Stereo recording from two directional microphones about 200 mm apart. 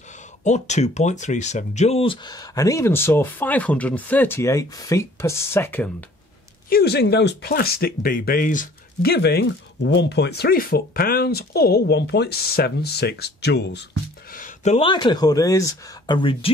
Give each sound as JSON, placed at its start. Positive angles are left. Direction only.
{"t": 0.4, "sound": "speech", "side_deg": 35}
{"t": 6.7, "sound": "speech", "side_deg": 55}
{"t": 14.3, "sound": "speech", "side_deg": 40}